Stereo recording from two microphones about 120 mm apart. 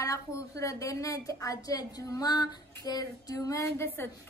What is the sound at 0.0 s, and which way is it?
A woman's voice, 25° left (ahead or behind).